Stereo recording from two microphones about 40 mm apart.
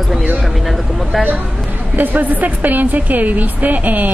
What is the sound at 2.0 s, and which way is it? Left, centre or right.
A woman's voice, right.